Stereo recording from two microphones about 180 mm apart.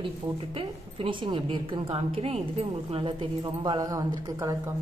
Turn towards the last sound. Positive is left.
turn(degrees=-20)  # may be behind; listen again after turning